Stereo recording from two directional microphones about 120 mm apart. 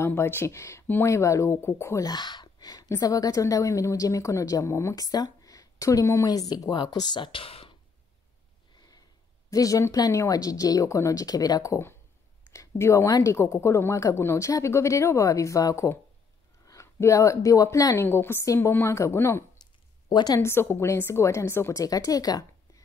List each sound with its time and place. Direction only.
0.0 s speech: 20° left (ahead or behind); by 7.7 s 50° left (ahead or behind)
9.5 s speech: 30° left (ahead or behind)
19.6 s a sound: 35° left (ahead or behind)
20.3 s speech: 20° left (ahead or behind)